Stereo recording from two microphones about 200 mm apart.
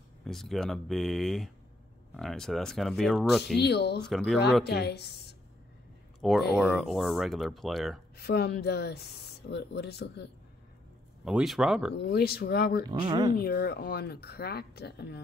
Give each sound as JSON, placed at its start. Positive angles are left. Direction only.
{"t": 0.2, "sound": "speech", "side_deg": 0}
{"t": 3.5, "sound": "speech", "side_deg": 55}
{"t": 4.1, "sound": "speech", "side_deg": 0}
{"t": 4.6, "sound": "speech", "side_deg": 55}
{"t": 6.5, "sound": "speech", "side_deg": 0}
{"t": 8.2, "sound": "speech", "side_deg": 55}
{"t": 11.2, "sound": "speech", "side_deg": 0}
{"t": 11.9, "sound": "speech", "side_deg": 55}
{"t": 12.9, "sound": "speech", "side_deg": -20}
{"t": 13.4, "sound": "speech", "side_deg": 50}